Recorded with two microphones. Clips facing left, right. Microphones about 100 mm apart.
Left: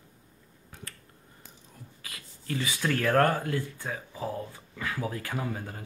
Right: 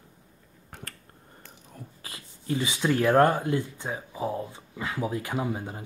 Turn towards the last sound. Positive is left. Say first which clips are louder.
# right 4 dB
turn(degrees=-20)  # may be behind; listen again after turning